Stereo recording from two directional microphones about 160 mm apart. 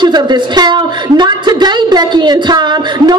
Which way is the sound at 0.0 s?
25° right (ahead or behind).